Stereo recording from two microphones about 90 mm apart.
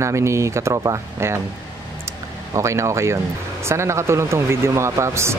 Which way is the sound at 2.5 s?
35° right (ahead or behind).